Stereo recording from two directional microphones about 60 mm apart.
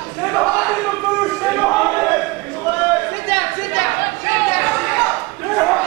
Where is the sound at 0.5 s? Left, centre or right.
Centre.